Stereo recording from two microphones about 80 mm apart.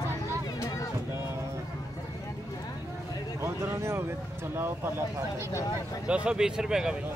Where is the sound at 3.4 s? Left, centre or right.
Right.